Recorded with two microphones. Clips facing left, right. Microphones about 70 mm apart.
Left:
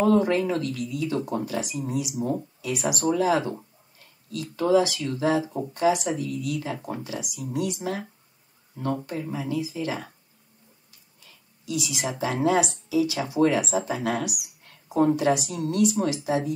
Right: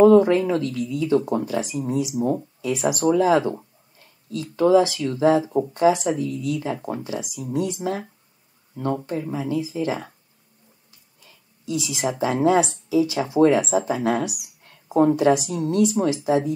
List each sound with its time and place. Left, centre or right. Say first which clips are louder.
0.0 s speech: right 7 dB; right
5.8 s speech: right 3 dB; right
9.3 s speech: right 2 dB; right
11.2 s speech: right 4 dB; right